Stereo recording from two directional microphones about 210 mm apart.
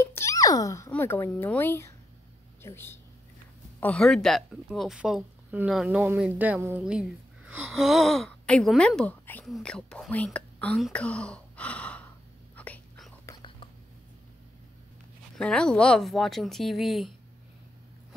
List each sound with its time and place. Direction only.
0.0 s speech: 15° left (ahead or behind)
12.5 s whispering: 5° left (ahead or behind)
13.2 s whispering: 20° left (ahead or behind)
15.3 s speech: 5° left (ahead or behind)